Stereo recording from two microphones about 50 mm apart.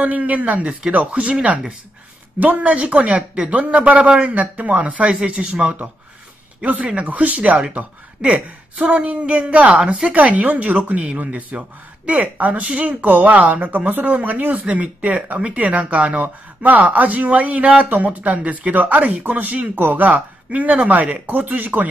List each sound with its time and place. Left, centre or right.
0.0 s speech: right
6.6 s speech: right